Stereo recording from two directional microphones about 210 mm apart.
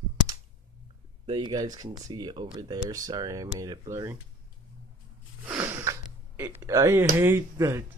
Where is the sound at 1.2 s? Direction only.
20° right (ahead or behind).